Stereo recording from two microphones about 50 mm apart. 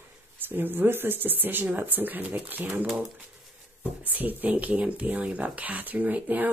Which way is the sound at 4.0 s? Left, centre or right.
Right.